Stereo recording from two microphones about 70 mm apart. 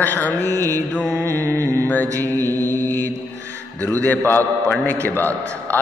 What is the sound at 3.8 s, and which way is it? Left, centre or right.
A man's voice, left.